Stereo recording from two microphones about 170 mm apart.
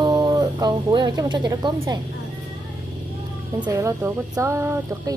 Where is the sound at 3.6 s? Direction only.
20° right (ahead or behind).